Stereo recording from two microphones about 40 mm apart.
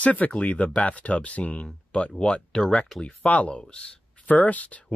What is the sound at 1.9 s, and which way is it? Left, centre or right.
Speech, left.